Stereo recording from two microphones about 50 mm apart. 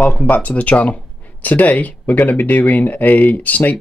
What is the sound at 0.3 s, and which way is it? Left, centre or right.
Speech, left.